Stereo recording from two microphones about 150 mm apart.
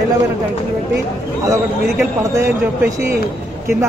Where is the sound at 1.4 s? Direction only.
20° right (ahead or behind).